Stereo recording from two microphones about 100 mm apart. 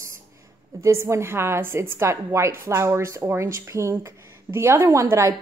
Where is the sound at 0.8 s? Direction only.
30° right (ahead or behind).